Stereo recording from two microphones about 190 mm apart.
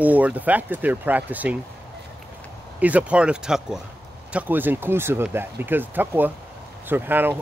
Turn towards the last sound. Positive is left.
turn(degrees=-10)  # may be behind; listen again after turning